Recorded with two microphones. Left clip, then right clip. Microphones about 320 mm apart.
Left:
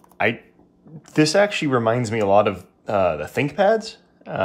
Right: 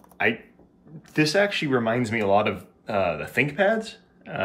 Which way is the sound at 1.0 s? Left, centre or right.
Left.